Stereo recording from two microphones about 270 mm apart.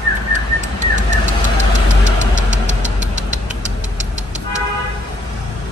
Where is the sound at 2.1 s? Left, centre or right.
Right.